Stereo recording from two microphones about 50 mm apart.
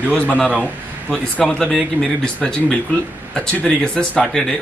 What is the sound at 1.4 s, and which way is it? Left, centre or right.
A man's voice, centre.